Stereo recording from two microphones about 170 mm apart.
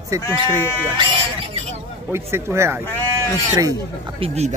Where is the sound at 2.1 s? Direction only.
15° right (ahead or behind).